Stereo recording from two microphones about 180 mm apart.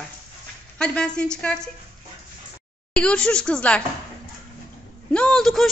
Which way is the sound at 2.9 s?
5° left (ahead or behind).